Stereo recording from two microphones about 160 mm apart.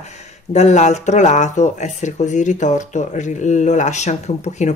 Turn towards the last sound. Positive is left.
turn(degrees=45)  # may be behind; listen again after turning